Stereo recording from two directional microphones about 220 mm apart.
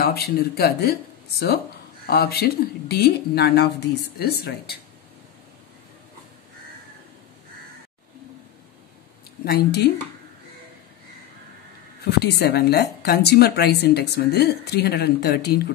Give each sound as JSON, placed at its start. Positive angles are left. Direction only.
{"t": 0.0, "sound": "speech", "side_deg": 45}
{"t": 2.0, "sound": "speech", "side_deg": 45}
{"t": 9.4, "sound": "speech", "side_deg": 45}
{"t": 12.0, "sound": "speech", "side_deg": 50}